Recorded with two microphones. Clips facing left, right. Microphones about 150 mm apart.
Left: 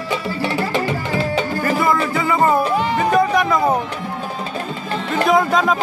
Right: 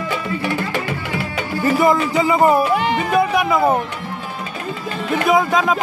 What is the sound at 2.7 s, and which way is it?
Music, 80° right.